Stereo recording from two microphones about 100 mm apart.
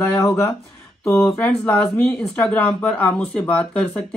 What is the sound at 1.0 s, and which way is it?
Speech, 20° left (ahead or behind).